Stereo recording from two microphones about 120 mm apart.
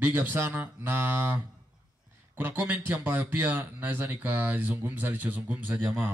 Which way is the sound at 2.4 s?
15° right (ahead or behind).